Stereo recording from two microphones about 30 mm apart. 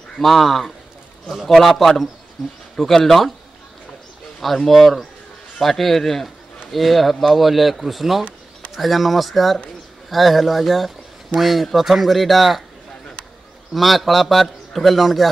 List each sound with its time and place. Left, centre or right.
0.2 s speech: centre
4.6 s speech: centre
13.7 s speech: centre